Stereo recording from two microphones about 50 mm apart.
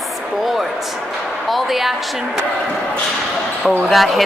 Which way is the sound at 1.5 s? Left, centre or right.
Centre.